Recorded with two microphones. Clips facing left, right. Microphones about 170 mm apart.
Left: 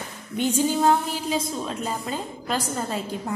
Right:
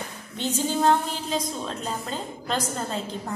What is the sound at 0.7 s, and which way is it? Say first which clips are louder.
A woman's voice: left 1 dB; 10° left (ahead or behind).